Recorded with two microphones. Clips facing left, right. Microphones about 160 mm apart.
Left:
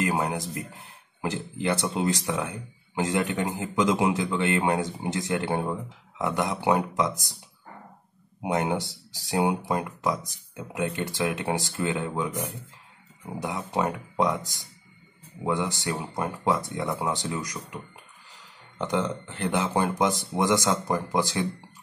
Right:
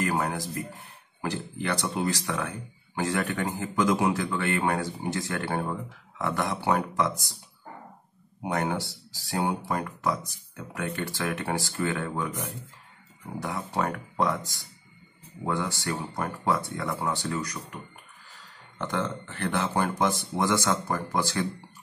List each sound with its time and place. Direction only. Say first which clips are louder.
0.0 s a man's voice: left 1 dB; 20° left (ahead or behind)
8.4 s a man's voice: left 2 dB; 20° left (ahead or behind)
13.4 s a man's voice: left 2 dB; 15° left (ahead or behind)
18.8 s a man's voice: left 3 dB; 20° left (ahead or behind)